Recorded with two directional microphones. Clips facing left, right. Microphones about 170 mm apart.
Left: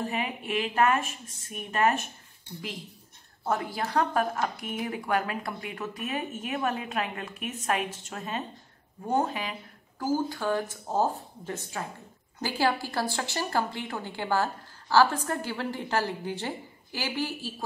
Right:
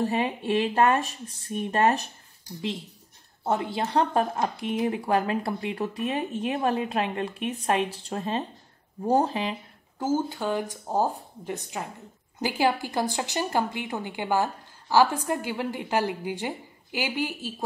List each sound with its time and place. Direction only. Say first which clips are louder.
0.0 s speech: right 6 dB; 30° right (ahead or behind)
3.4 s a woman's voice: right 3 dB; 25° right (ahead or behind)